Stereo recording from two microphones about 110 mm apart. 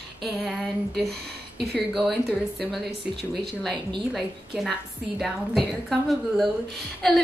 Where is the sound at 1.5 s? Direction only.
Centre (ahead or behind).